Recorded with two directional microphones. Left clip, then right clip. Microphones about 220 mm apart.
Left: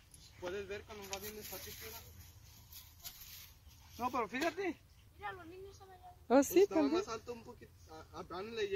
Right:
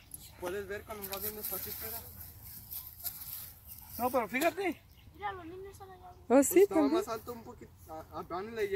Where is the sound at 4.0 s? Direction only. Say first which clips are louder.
Right 6 dB; 10° right (ahead or behind).